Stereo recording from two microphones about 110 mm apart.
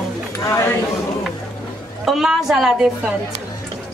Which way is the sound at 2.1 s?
Centre (ahead or behind).